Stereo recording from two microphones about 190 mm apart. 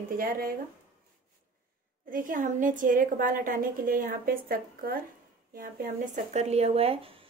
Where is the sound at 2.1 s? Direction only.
45° right (ahead or behind).